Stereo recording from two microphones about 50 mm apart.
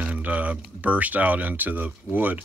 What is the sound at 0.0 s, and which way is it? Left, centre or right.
Speech, right.